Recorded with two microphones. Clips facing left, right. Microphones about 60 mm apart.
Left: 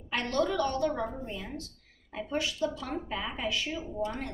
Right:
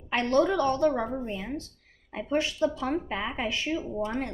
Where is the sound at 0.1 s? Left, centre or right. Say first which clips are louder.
Right 5 dB; right.